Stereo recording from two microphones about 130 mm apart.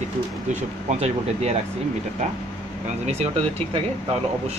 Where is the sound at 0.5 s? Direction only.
55° right (ahead or behind).